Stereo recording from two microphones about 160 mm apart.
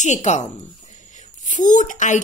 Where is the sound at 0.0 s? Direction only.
50° left (ahead or behind).